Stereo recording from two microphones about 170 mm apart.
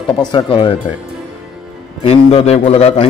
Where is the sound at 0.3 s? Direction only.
30° left (ahead or behind).